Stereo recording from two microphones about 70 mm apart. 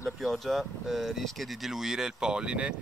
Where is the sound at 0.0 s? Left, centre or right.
Centre.